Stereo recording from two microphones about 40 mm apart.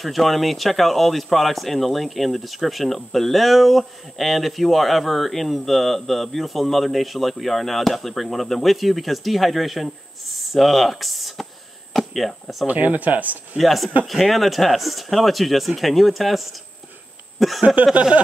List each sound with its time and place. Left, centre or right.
0.0 s speech: centre
12.6 s speech: right
13.6 s speech: centre
17.4 s a sound: centre
17.8 s speech: right